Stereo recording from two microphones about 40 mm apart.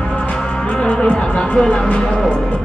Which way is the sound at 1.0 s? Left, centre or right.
Left.